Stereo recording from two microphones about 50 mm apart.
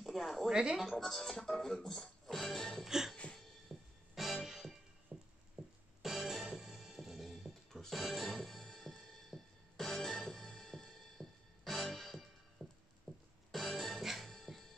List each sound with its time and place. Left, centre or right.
0.0 s a sound: centre
0.5 s a woman's voice: centre
0.7 s speech: centre
1.9 s music: centre
2.8 s music: centre
5.1 s a sound: right
5.6 s music: centre